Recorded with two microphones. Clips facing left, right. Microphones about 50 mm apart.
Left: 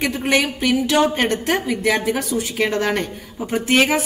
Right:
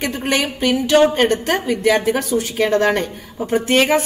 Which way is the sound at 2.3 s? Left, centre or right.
Right.